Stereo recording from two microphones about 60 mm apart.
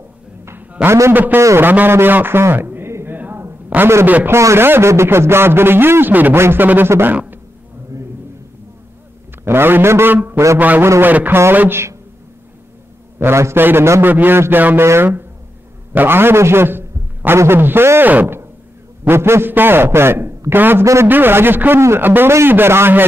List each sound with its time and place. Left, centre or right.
0.8 s a man's voice: centre
1.1 s a man's voice: right
3.1 s a sound: right
4.0 s a man's voice: right
4.3 s a man's voice: right
4.6 s a man's voice: right
9.4 s a man's voice: right
11.7 s a man's voice: right
13.2 s a man's voice: right
14.0 s a man's voice: right
14.8 s a man's voice: right
19.0 s a man's voice: right
20.8 s a man's voice: right
21.1 s a man's voice: right